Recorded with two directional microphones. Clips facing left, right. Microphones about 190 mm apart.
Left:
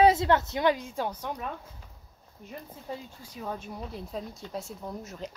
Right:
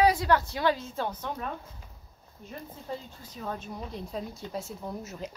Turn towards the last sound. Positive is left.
turn(degrees=-5)  # may be behind; listen again after turning